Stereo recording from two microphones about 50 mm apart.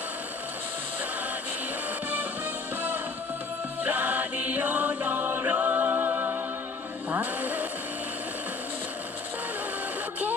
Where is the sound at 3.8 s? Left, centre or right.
Right.